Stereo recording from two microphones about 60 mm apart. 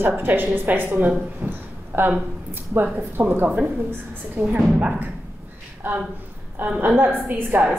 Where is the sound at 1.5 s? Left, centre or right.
Right.